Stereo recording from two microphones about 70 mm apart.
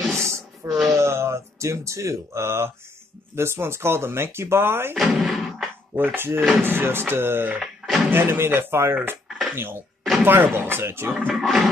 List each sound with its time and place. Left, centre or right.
0.7 s a sound: centre
0.9 s speech: right
4.9 s speech: centre
5.9 s speech: right
7.6 s a sound: centre
8.1 s speech: right
11.3 s speech: centre